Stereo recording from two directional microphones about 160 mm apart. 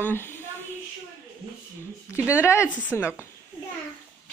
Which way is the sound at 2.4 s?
15° left (ahead or behind).